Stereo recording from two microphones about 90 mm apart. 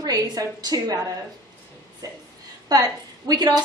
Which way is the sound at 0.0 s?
45° right (ahead or behind).